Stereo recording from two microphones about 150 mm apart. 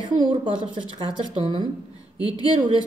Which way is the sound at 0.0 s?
35° right (ahead or behind).